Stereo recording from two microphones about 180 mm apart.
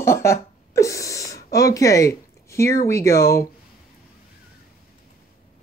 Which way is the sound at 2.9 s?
15° left (ahead or behind).